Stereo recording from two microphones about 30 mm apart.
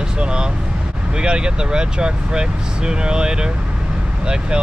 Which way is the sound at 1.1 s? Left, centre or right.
Right.